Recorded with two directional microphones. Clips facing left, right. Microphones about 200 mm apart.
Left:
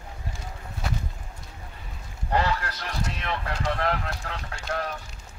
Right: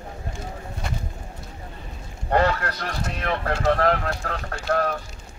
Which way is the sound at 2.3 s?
55° right (ahead or behind).